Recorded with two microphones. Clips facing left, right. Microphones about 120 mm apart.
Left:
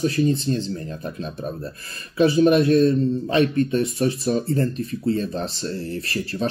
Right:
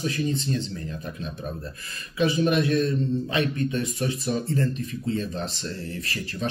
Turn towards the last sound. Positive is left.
turn(degrees=35)  # may be behind; listen again after turning